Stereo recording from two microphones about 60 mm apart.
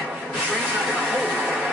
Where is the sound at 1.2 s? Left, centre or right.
Right.